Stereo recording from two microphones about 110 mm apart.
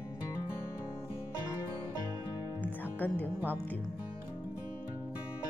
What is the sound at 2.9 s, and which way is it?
Music, 15° left (ahead or behind).